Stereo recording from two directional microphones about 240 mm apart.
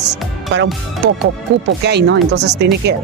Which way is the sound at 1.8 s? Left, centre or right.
Right.